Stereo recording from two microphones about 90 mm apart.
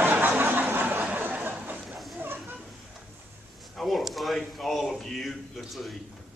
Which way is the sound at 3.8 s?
Centre (ahead or behind).